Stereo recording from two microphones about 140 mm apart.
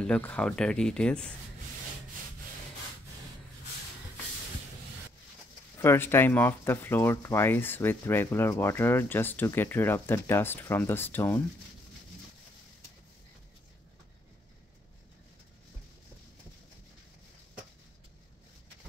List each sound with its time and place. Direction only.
0.0 s speech: 10° left (ahead or behind)
5.8 s speech: 15° left (ahead or behind)